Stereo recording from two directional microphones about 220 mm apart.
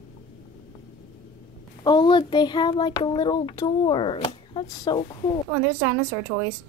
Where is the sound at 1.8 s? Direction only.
20° left (ahead or behind).